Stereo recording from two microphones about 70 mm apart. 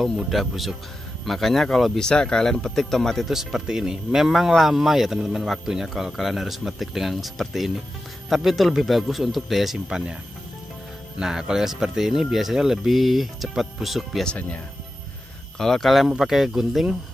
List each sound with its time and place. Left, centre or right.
0.3 s speech: centre
11.1 s speech: centre
14.2 s speech: centre
15.5 s speech: centre